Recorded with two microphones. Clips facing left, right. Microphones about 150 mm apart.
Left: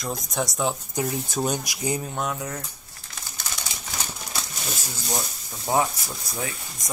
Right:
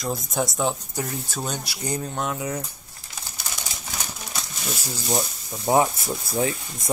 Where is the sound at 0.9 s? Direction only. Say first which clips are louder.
Left 3 dB; 10° left (ahead or behind); by 2.6 s 5° right (ahead or behind).